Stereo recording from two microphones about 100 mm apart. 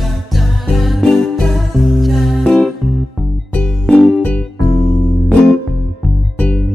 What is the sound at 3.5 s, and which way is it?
Music, 10° left (ahead or behind).